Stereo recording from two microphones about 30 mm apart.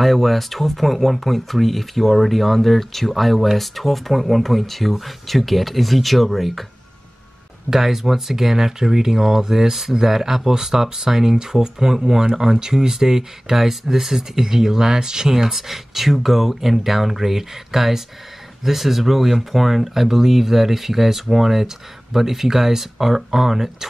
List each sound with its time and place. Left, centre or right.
0.0 s speech: centre
7.7 s speech: centre